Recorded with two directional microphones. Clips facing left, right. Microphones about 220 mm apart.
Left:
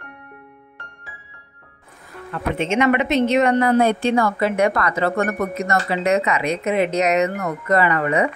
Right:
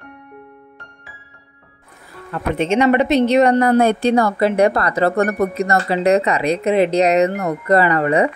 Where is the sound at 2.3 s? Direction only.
35° right (ahead or behind).